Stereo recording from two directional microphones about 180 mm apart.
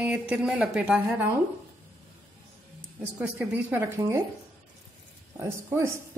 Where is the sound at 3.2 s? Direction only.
10° right (ahead or behind).